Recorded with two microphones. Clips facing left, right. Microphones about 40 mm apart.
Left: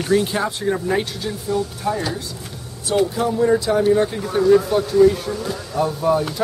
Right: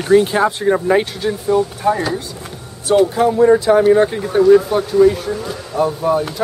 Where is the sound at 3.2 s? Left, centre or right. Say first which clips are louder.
Right 6 dB; centre.